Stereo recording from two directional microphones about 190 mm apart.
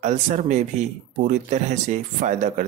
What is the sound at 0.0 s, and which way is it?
Speech, 40° right (ahead or behind).